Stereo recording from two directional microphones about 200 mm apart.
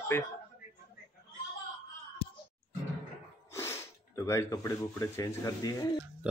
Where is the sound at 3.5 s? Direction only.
15° left (ahead or behind).